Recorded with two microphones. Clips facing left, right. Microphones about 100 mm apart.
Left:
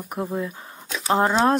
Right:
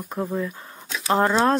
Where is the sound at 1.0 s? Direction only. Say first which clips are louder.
Even; 20° left (ahead or behind).